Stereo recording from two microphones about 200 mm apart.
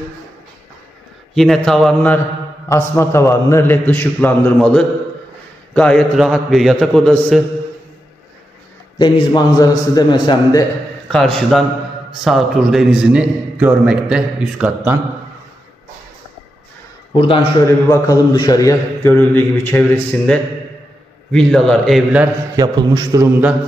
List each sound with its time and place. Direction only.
1.3 s a man's voice: centre (ahead or behind)
2.7 s a man's voice: 15° left (ahead or behind)
8.9 s a man's voice: 25° left (ahead or behind)
11.1 s a man's voice: 5° left (ahead or behind)
17.1 s a man's voice: 25° left (ahead or behind)
17.6 s a man's voice: 15° left (ahead or behind); by 22.3 s 5° right (ahead or behind)
22.6 s a man's voice: 20° right (ahead or behind)